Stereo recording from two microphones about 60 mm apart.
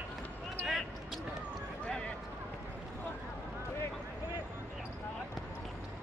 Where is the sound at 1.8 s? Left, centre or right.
Centre.